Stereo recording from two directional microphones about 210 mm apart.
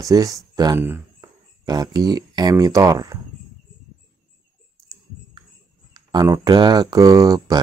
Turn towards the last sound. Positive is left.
turn(degrees=-15)  # may be behind; listen again after turning